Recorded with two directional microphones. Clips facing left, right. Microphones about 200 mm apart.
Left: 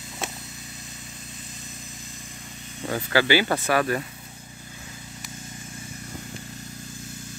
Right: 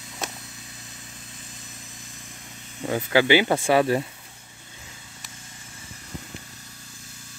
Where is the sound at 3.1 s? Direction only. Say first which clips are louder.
Right 2 dB; 20° right (ahead or behind).